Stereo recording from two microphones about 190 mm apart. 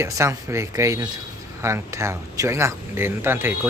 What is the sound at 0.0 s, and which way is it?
A man's voice, 15° right (ahead or behind).